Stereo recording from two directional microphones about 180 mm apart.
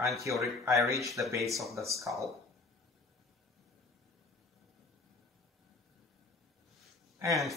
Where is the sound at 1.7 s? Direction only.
15° right (ahead or behind).